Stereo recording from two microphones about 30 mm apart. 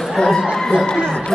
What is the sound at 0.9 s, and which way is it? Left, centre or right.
Speech, left.